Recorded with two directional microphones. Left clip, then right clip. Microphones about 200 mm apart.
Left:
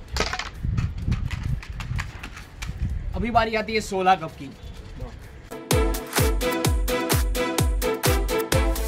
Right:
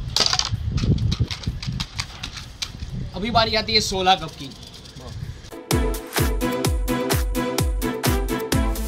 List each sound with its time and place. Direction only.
0.1 s a sound: 30° right (ahead or behind)
0.7 s horse: centre (ahead or behind)
3.2 s speech: centre (ahead or behind)
5.7 s music: centre (ahead or behind)